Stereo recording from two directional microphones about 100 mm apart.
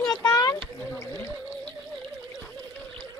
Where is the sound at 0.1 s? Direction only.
40° left (ahead or behind).